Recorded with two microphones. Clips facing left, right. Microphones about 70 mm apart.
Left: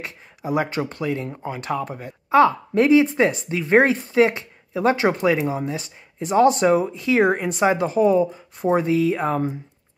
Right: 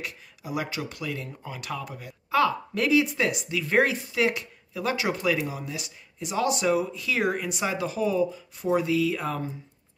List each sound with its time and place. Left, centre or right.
0.0 s speech: left